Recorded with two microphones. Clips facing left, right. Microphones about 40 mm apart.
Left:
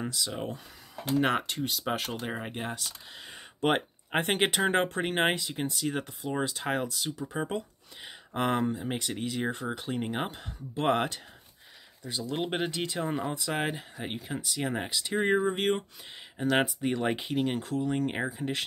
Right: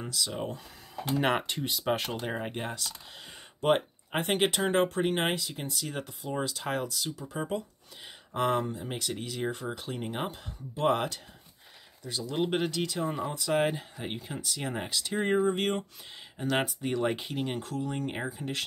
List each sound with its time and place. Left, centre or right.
0.0 s speech: centre
1.2 s speech: centre
2.7 s speech: centre
4.1 s speech: left
5.8 s speech: centre
10.3 s speech: left
12.0 s speech: centre
13.1 s speech: centre